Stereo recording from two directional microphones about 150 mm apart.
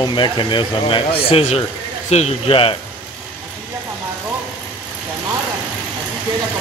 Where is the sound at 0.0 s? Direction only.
30° left (ahead or behind).